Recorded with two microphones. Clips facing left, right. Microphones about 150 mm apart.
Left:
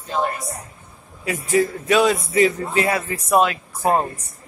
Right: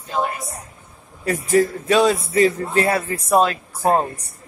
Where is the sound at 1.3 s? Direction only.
35° right (ahead or behind).